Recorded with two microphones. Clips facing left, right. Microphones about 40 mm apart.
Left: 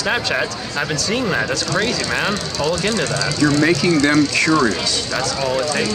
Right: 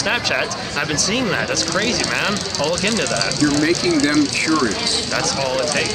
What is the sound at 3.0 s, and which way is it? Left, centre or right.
Speech, left.